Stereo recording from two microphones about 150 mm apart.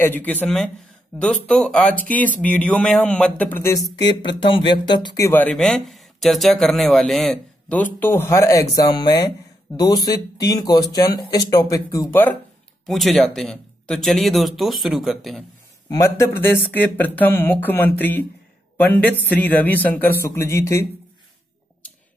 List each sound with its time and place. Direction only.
0.0 s speech: 10° left (ahead or behind)
4.0 s speech: 30° left (ahead or behind)
5.2 s speech: 10° left (ahead or behind)
7.7 s speech: 10° left (ahead or behind)
12.8 s speech: centre (ahead or behind)
15.9 s speech: 20° left (ahead or behind)